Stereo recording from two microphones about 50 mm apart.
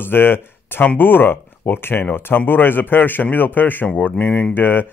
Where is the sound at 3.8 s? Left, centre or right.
Left.